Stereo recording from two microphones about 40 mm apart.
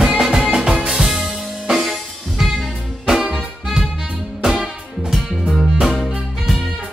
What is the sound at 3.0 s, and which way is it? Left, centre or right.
Music, centre.